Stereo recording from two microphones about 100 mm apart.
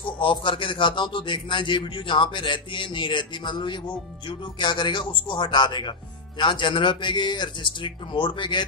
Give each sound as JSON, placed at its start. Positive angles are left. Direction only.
{"t": 0.2, "sound": "a man's voice", "side_deg": 55}